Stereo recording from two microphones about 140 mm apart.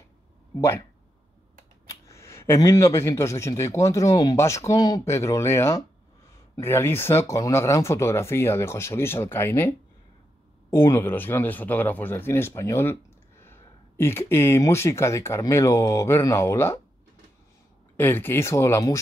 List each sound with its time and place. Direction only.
0.6 s speech: 20° left (ahead or behind)
1.9 s speech: 20° left (ahead or behind)
17.9 s speech: 15° left (ahead or behind)